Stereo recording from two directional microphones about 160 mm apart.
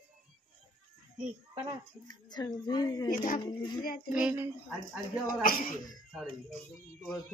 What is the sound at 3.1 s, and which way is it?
Speech, 55° left (ahead or behind).